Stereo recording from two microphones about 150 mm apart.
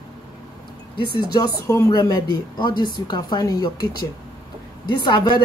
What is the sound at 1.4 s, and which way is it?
Speech, 25° left (ahead or behind).